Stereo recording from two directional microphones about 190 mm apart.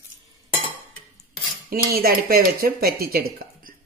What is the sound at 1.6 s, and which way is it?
Speech, 50° right (ahead or behind).